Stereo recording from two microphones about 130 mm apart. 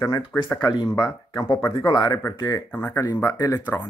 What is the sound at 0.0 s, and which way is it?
Speech, 15° left (ahead or behind).